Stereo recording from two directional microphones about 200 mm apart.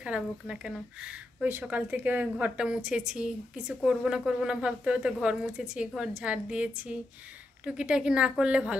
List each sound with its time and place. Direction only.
0.0 s speech: 5° right (ahead or behind)